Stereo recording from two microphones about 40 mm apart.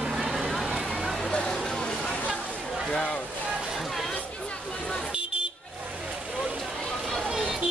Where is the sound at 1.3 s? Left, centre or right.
Centre.